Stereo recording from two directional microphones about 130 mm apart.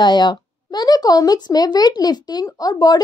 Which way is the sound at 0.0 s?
35° left (ahead or behind).